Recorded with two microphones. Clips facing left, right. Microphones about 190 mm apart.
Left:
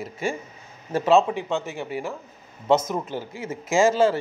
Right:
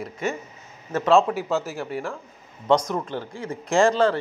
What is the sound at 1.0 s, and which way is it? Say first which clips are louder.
A man's voice: even; centre (ahead or behind).